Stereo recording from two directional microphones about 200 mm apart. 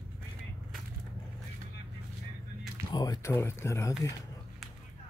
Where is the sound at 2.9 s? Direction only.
20° left (ahead or behind).